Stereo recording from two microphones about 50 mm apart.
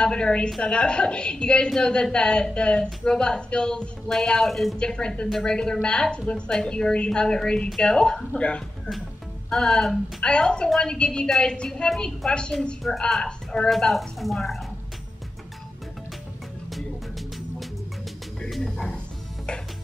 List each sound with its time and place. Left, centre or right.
0.0 s a woman's voice: left
4.5 s a woman's voice: centre
4.7 s a woman's voice: centre
9.5 s a woman's voice: centre
12.8 s a woman's voice: centre
13.2 s speech: centre
13.7 s a woman's voice: centre
18.5 s a sound: centre